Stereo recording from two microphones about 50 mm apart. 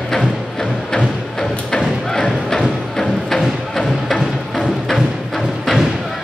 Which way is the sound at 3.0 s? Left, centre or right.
Centre.